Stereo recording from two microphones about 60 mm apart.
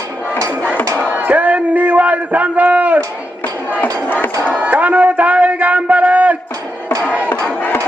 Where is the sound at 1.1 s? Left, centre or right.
Right.